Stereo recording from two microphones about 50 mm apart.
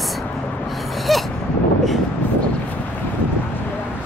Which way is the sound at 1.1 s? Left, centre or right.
Centre.